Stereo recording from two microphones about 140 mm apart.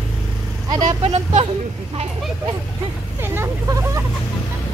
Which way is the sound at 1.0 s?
50° right (ahead or behind).